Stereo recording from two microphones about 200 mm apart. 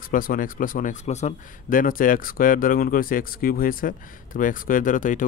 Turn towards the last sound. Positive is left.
turn(degrees=40)  # may be behind; listen again after turning